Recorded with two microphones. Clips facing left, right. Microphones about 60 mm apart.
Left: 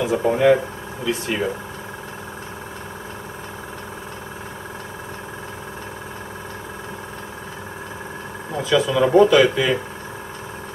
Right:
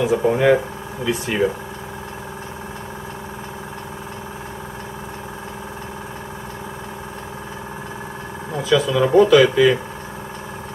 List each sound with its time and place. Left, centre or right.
0.0 s speech: centre
8.6 s speech: centre